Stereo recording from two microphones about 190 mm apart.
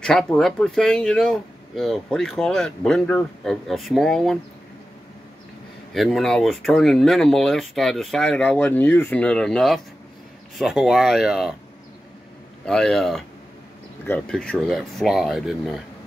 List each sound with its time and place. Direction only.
0.0 s speech: 5° left (ahead or behind)
5.9 s speech: centre (ahead or behind)
12.6 s speech: 5° left (ahead or behind)